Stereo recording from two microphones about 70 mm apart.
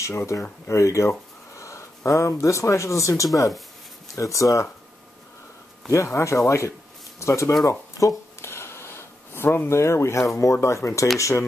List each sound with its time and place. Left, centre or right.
0.0 s speech: left
5.9 s speech: left
8.4 s a sound: left
10.3 s speech: left